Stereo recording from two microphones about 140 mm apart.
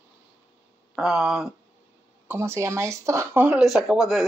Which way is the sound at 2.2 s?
15° right (ahead or behind).